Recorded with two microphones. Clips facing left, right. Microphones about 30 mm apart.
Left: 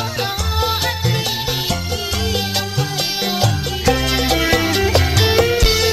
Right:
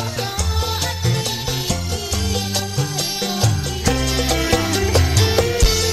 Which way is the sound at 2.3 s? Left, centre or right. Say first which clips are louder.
Left 3 dB; left.